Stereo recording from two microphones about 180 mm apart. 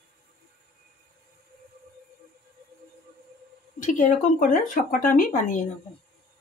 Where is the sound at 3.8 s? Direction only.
45° left (ahead or behind).